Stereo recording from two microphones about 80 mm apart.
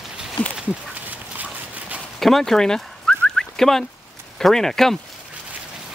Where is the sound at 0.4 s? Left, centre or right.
Centre.